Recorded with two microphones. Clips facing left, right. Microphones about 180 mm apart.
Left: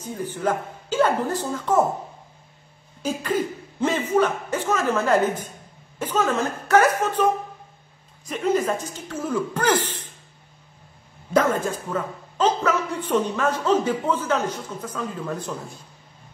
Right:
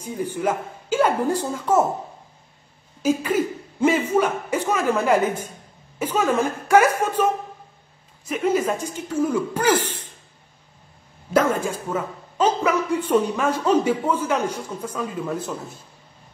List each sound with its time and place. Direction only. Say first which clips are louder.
0.0 s a man's voice: right 2 dB; 10° right (ahead or behind)
3.0 s a man's voice: right 4 dB; 10° right (ahead or behind)
8.3 s a man's voice: right 1 dB; 10° right (ahead or behind)
11.3 s a man's voice: right 1 dB; 10° right (ahead or behind)